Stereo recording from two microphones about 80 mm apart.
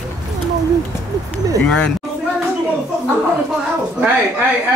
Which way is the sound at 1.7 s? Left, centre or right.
Centre.